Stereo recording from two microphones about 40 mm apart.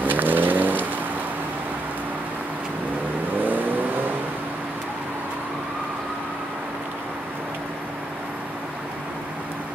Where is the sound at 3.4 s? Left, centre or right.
Right.